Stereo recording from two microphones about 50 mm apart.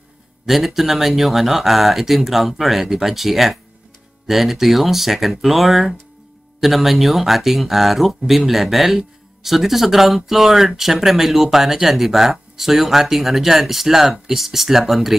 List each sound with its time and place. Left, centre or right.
0.5 s speech: centre